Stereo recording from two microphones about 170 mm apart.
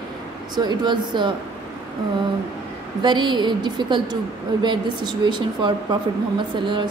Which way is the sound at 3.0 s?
25° right (ahead or behind).